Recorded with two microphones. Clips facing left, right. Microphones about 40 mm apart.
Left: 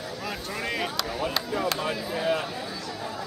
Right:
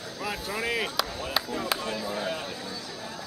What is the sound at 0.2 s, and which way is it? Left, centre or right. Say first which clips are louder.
Speech: right 3 dB; centre.